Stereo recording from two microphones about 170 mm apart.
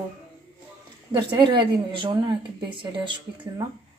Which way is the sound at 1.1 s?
25° right (ahead or behind).